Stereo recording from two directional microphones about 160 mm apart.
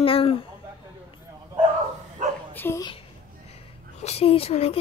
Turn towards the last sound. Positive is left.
turn(degrees=40)  # may be behind; listen again after turning